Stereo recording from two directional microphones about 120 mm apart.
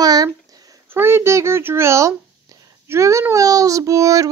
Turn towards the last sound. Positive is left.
turn(degrees=-25)  # may be behind; listen again after turning